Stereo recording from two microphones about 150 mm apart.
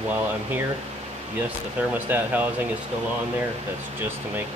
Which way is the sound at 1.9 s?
10° right (ahead or behind).